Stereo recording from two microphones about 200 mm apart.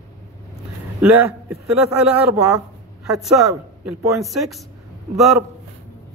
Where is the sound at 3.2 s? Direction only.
Centre (ahead or behind).